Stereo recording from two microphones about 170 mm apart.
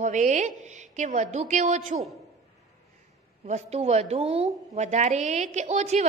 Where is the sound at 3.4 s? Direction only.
40° right (ahead or behind).